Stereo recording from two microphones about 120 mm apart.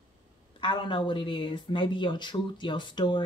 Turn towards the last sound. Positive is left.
turn(degrees=40)  # may be behind; listen again after turning